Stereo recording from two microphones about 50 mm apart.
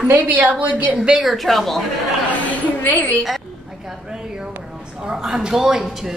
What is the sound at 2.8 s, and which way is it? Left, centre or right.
Speech, left.